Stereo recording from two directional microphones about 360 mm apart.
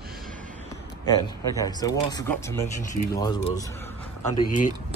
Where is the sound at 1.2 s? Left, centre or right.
Centre.